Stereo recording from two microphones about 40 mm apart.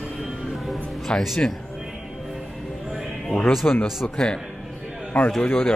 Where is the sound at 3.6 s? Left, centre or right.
Left.